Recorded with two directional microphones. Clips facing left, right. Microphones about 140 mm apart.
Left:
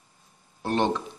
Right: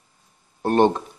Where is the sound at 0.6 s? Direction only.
50° right (ahead or behind).